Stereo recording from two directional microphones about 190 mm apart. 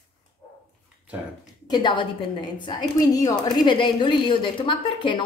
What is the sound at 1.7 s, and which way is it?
A woman's voice, 25° left (ahead or behind).